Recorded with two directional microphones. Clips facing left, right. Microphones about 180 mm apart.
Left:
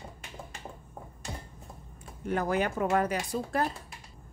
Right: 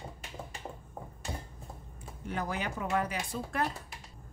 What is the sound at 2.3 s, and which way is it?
Speech, 50° left (ahead or behind).